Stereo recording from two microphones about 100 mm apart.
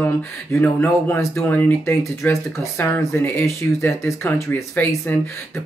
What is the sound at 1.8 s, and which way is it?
Speech, 30° left (ahead or behind).